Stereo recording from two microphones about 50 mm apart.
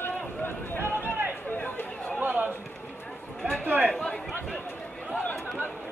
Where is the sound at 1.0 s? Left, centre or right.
Right.